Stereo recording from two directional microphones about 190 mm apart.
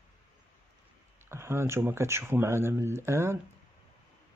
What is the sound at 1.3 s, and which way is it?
Speech, 15° right (ahead or behind).